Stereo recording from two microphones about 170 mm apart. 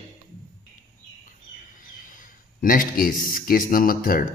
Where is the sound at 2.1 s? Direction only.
50° left (ahead or behind).